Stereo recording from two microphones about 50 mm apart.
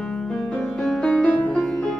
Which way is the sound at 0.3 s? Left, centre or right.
Centre.